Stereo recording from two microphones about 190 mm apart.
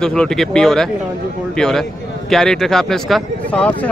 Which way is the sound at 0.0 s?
5° left (ahead or behind).